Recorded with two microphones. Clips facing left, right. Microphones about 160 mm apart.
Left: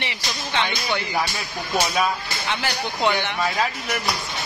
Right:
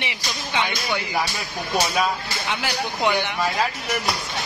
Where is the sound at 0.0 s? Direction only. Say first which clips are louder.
Even; 10° right (ahead or behind).